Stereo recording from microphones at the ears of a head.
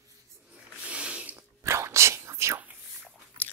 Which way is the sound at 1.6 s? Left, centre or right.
Right.